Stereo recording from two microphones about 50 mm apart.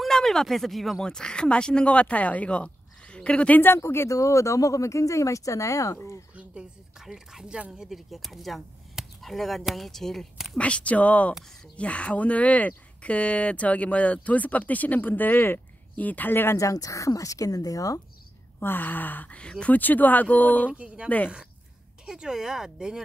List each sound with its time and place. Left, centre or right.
0.0 s speech: centre
1.0 s speech: centre
3.7 s speech: left
7.0 s speech: centre
7.4 s speech: centre
8.1 s speech: centre
10.3 s speech: centre
10.6 s speech: left
16.5 s speech: left
18.6 s speech: left
19.3 s speech: left
19.7 s speech: left
20.7 s speech: right
22.0 s speech: centre